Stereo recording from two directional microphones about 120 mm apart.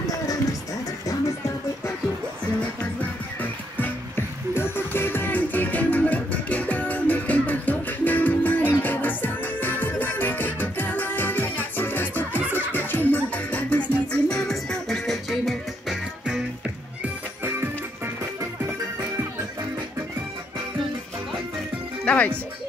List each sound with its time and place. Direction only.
4.6 s music: 20° left (ahead or behind); by 16.3 s centre (ahead or behind)
17.0 s music: 20° right (ahead or behind)
22.0 s music: 10° left (ahead or behind)